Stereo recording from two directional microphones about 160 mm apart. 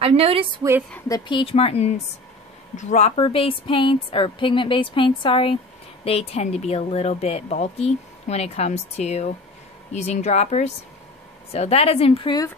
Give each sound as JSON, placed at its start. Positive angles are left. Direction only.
{"t": 0.0, "sound": "a woman's voice", "side_deg": -35}
{"t": 1.0, "sound": "speech", "side_deg": 25}